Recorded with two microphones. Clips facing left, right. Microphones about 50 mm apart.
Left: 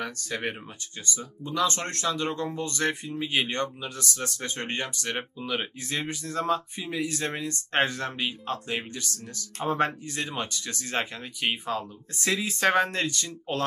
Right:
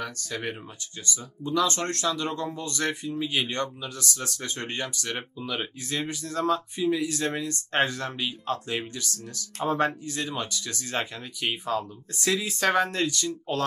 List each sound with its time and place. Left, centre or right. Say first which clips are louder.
0.0 s speech: left 1 dB; left
1.1 s speech: right 4 dB; centre